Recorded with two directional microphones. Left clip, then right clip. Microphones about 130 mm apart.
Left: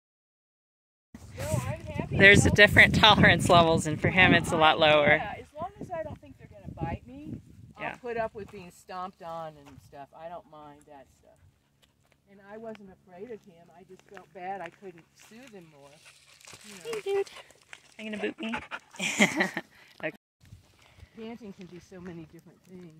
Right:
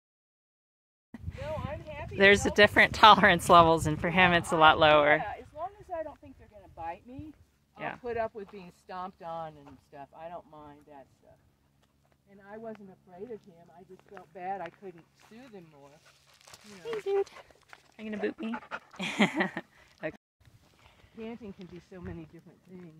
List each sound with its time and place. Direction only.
1.3 s a sound: 5° right (ahead or behind)
2.1 s speech: 10° right (ahead or behind)
5.2 s a sound: 15° left (ahead or behind)
8.0 s speech: 35° left (ahead or behind)
12.3 s speech: 15° left (ahead or behind)
15.3 s speech: 35° left (ahead or behind)
17.0 s speech: 5° right (ahead or behind)
21.2 s speech: 25° left (ahead or behind)